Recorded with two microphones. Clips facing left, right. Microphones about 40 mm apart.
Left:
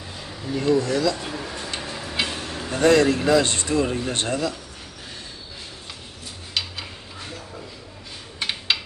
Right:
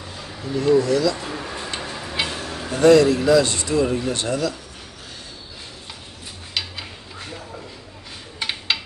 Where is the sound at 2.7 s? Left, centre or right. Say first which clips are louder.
Right 4 dB; left.